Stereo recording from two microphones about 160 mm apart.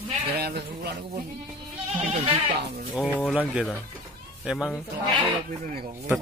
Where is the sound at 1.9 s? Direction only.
40° right (ahead or behind).